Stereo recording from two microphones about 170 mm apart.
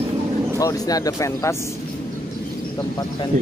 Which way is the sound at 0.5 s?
20° left (ahead or behind).